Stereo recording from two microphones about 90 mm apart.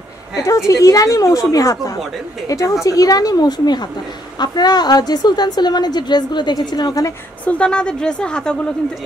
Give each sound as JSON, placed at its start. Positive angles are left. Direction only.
{"t": 0.4, "sound": "a woman's voice", "side_deg": 35}
{"t": 7.4, "sound": "a woman's voice", "side_deg": 10}